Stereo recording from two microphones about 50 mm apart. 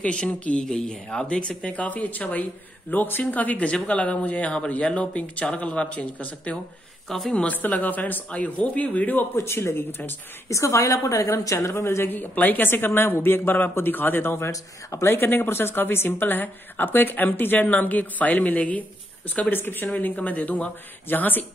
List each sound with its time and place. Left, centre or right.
0.0 s speech: left
7.1 s speech: centre
7.5 s speech: left
9.4 s a woman's voice: left
10.5 s a woman's voice: left
11.7 s speech: left
12.1 s a woman's voice: left
19.5 s a woman's voice: left